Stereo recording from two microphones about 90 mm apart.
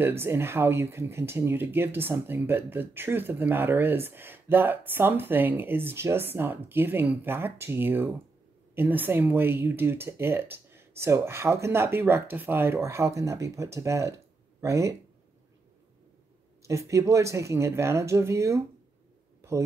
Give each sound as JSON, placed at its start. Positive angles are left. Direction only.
{"t": 0.0, "sound": "speech", "side_deg": -25}
{"t": 16.6, "sound": "speech", "side_deg": -35}